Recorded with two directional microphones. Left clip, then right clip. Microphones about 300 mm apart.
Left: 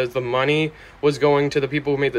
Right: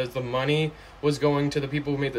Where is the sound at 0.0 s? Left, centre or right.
Centre.